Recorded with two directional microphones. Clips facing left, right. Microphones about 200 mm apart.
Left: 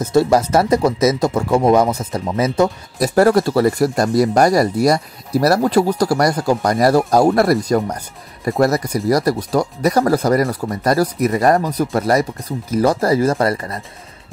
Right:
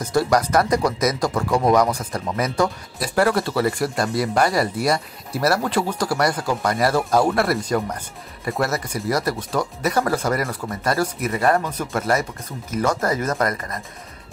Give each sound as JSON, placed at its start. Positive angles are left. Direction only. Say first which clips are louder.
{"t": 0.0, "sound": "speech", "louder": "left 5 dB", "side_deg": 25}
{"t": 3.0, "sound": "speech", "louder": "left 7 dB", "side_deg": 40}